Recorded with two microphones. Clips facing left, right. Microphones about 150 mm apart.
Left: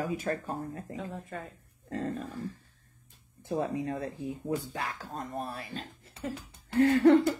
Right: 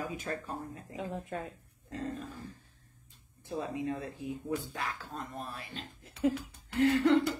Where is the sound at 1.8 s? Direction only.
50° left (ahead or behind).